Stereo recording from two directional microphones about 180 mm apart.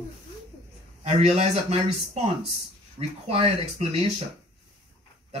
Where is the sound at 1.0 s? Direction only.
35° right (ahead or behind).